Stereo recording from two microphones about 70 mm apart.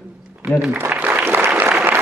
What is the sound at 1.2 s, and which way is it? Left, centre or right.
Applause, right.